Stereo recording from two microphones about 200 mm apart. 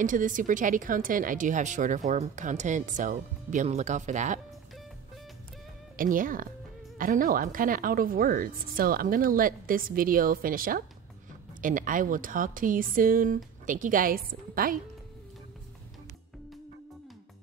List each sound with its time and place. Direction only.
0.0 s speech: 40° right (ahead or behind)
5.9 s a woman's voice: 40° right (ahead or behind)